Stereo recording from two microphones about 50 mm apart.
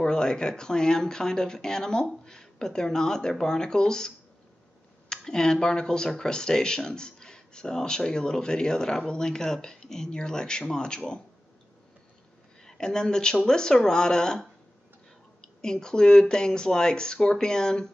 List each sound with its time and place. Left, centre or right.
0.0 s speech: centre
5.1 s speech: centre
12.6 s a woman's voice: centre